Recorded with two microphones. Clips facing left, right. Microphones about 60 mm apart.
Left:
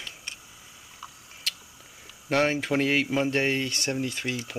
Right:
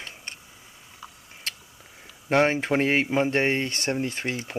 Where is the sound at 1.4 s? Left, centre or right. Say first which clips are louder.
Even; right.